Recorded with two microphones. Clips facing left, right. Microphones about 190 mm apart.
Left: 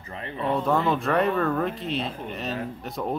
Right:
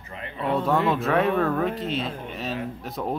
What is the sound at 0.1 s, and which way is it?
Speech, 30° left (ahead or behind).